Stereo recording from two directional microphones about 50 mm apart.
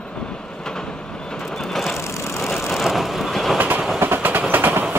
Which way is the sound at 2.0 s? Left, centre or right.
Left.